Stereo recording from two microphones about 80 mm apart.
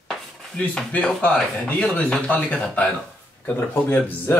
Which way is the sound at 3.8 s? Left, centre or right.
Left.